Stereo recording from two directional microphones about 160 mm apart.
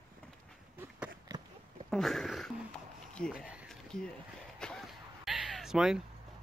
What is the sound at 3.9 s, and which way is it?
Speech, 5° left (ahead or behind).